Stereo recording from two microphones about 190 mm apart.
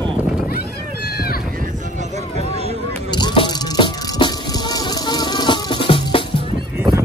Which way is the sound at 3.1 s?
25° left (ahead or behind).